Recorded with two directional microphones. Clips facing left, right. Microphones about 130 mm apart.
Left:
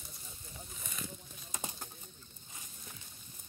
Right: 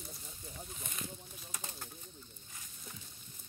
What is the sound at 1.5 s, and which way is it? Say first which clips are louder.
Bird: left 4 dB; 20° left (ahead or behind).